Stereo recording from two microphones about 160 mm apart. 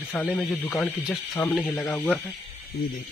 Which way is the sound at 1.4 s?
10° left (ahead or behind).